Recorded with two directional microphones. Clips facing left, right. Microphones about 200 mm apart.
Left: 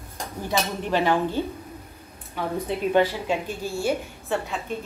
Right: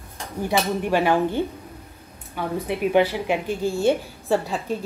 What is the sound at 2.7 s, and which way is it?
A woman's voice, 15° right (ahead or behind).